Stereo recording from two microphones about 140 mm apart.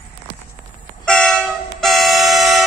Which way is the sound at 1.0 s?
5° left (ahead or behind).